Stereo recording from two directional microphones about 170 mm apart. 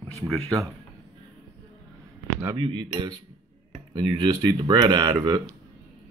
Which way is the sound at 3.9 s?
25° right (ahead or behind).